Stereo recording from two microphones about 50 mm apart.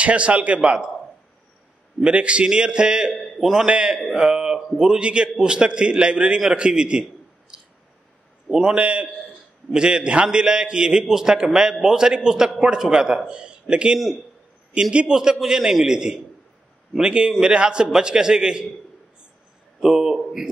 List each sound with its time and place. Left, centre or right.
0.0 s a man's voice: right
2.0 s a man's voice: right
3.2 s a man's voice: centre
3.6 s a man's voice: centre
4.1 s a sound: centre
4.6 s a man's voice: centre
7.5 s squish: centre
8.5 s a man's voice: centre
8.7 s a man's voice: right
19.8 s a man's voice: centre